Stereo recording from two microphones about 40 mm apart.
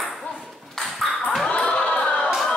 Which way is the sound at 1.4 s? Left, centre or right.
Left.